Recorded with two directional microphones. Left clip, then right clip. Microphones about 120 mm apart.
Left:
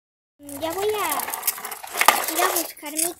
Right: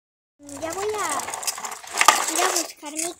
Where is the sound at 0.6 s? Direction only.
10° left (ahead or behind).